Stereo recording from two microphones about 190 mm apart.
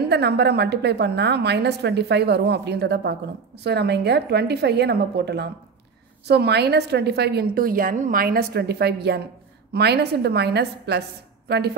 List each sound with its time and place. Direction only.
0.1 s a woman's voice: 60° right (ahead or behind)